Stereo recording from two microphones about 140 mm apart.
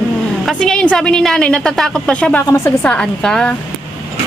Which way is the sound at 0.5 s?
5° left (ahead or behind).